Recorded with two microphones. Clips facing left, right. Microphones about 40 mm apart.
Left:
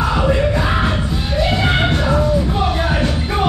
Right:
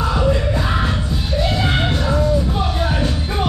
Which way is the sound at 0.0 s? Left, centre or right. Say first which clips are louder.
Left 2 dB; left.